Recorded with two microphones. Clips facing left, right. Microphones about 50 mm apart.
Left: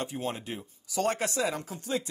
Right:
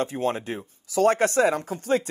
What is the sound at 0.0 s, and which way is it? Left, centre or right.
Speech, right.